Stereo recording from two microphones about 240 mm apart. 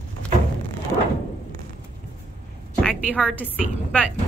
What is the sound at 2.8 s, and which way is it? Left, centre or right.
Speech, centre.